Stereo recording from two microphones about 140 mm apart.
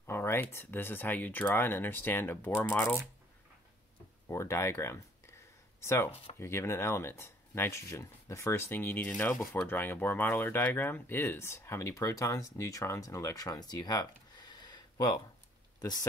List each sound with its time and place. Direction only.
0.0 s speech: 15° left (ahead or behind)
4.3 s speech: 20° left (ahead or behind)